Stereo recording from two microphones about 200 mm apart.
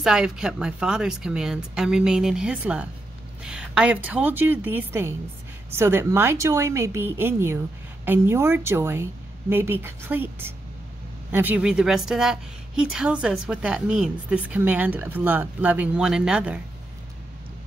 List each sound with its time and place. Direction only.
0.0 s a woman's voice: 5° right (ahead or behind)